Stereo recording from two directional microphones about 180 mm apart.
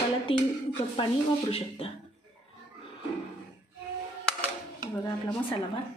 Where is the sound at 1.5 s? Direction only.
30° left (ahead or behind).